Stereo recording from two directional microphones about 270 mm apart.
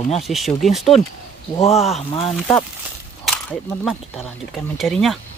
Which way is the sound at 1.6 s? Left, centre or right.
Left.